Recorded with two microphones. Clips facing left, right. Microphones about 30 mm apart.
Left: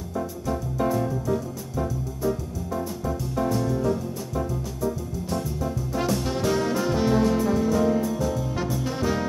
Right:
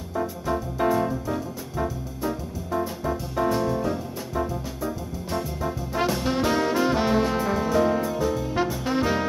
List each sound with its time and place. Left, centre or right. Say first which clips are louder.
0.1 s music: right 2 dB; right